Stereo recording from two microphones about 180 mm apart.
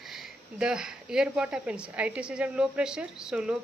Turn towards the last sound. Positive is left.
turn(degrees=-5)  # may be behind; listen again after turning